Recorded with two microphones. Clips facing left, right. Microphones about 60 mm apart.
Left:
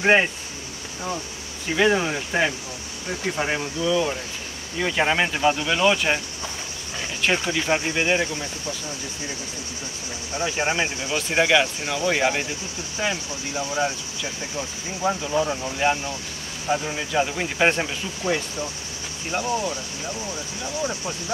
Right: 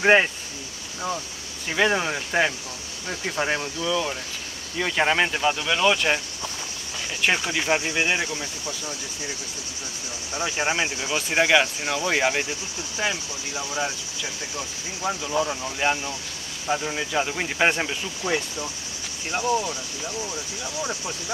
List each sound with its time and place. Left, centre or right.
0.0 s speech: centre
1.7 s speech: centre
7.2 s speech: centre
10.6 s speech: centre
15.2 s speech: centre